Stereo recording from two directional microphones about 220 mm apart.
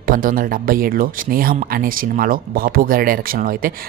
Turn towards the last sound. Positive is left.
turn(degrees=-40)  # may be behind; listen again after turning